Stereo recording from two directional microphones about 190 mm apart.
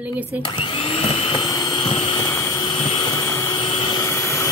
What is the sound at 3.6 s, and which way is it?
Vehicle, 30° left (ahead or behind).